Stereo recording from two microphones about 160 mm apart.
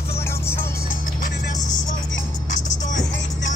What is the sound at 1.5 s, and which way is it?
Music, 50° left (ahead or behind).